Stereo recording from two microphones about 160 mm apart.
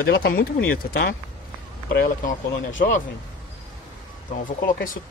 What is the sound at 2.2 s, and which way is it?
Speech, 55° left (ahead or behind).